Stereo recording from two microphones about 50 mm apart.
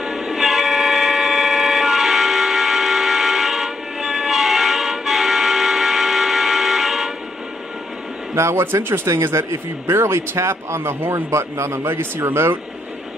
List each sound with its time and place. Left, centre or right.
0.0 s vehicle: centre
8.4 s speech: right